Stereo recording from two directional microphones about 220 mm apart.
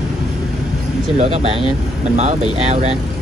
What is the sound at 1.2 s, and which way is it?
A man's voice, 30° right (ahead or behind).